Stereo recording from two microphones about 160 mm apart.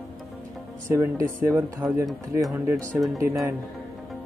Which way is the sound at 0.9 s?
20° right (ahead or behind).